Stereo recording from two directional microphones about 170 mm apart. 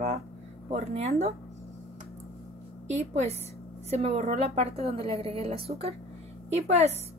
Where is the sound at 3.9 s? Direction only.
35° right (ahead or behind).